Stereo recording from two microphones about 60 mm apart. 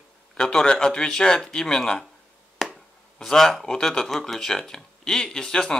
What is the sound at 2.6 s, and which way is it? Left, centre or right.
Finger snapping, centre.